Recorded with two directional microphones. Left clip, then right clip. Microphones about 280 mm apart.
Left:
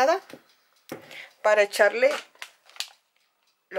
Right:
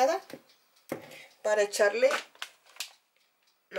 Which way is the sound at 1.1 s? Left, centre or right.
Centre.